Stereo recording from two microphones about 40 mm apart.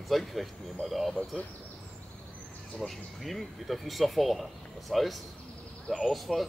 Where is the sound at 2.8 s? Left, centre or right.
Centre.